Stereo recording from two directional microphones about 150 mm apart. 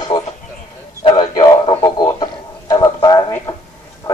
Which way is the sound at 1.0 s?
30° left (ahead or behind).